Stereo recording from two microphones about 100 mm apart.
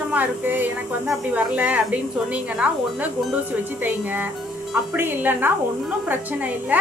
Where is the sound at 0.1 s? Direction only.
15° right (ahead or behind).